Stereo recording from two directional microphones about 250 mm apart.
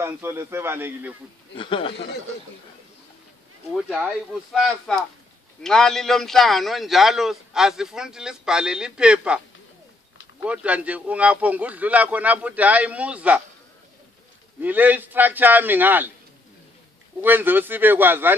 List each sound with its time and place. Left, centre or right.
0.0 s a man's voice: centre
1.5 s speech: left
3.7 s a man's voice: centre
10.4 s a man's voice: centre
14.6 s a man's voice: centre
17.2 s a man's voice: centre